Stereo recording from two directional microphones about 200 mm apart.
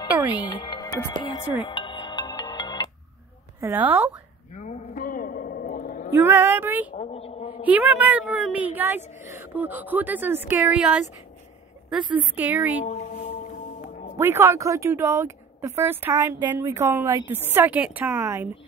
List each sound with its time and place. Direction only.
0.3 s speech: 20° left (ahead or behind)
1.7 s music: 25° left (ahead or behind)
3.6 s speech: 10° right (ahead or behind)
4.6 s a sound: 35° left (ahead or behind)
6.1 s speech: 10° right (ahead or behind)
7.0 s a sound: 30° left (ahead or behind)
7.6 s speech: 10° right (ahead or behind)
12.0 s speech: 25° right (ahead or behind)
12.4 s speech: 10° right (ahead or behind)
12.8 s speech: 35° left (ahead or behind)
13.8 s music: 40° left (ahead or behind)
14.1 s speech: 15° right (ahead or behind)